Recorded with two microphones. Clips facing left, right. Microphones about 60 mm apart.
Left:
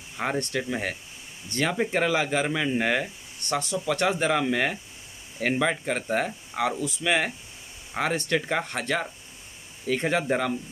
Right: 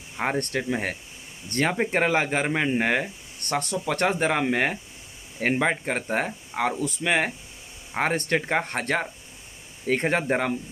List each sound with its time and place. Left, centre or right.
0.4 s speech: right